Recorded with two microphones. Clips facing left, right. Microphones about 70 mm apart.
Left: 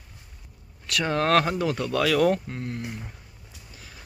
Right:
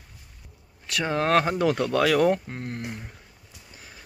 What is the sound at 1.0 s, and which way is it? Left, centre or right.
Speech, centre.